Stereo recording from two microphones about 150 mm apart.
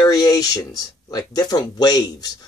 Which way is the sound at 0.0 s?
20° left (ahead or behind).